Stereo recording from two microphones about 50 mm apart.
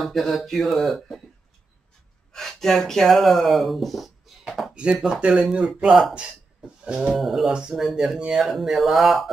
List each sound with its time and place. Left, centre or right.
0.0 s speech: centre
2.3 s speech: centre
4.7 s speech: right
6.8 s a sound: centre
7.2 s speech: centre